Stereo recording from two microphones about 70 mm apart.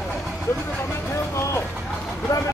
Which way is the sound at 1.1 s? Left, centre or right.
Left.